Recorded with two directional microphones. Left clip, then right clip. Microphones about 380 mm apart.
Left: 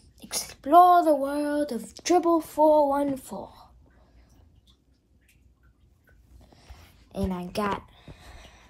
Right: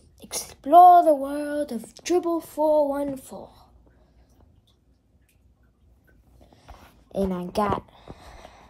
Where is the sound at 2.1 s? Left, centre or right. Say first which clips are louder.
Left 2 dB; centre.